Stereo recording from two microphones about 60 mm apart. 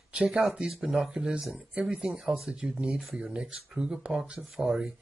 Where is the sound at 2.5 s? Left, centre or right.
Centre.